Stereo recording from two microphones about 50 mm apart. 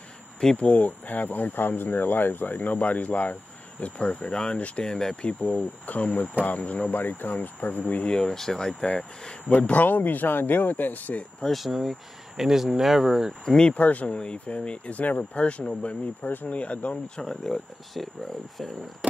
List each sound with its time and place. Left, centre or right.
0.6 s speech: left
4.8 s speech: centre
5.9 s speech: left
8.1 s speech: centre
9.5 s speech: left
11.4 s speech: centre
13.5 s speech: centre
13.7 s speech: left
14.1 s speech: centre
16.9 s speech: centre